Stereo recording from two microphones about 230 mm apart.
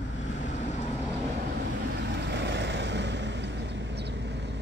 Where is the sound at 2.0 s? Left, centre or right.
Right.